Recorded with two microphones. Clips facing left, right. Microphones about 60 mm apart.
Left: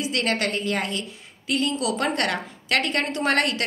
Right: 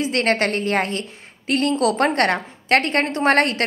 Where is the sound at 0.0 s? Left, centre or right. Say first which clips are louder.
Right 5 dB; right.